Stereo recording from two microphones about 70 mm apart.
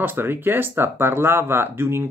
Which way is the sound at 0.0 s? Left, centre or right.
Right.